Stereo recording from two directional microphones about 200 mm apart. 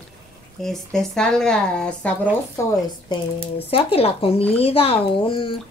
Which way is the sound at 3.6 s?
30° left (ahead or behind).